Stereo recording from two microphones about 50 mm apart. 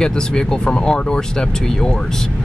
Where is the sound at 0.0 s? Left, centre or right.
Centre.